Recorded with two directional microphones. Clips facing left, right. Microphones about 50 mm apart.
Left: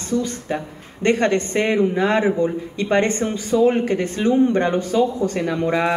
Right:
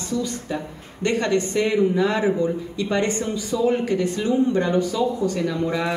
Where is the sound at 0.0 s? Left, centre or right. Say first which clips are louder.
Left 3 dB; left.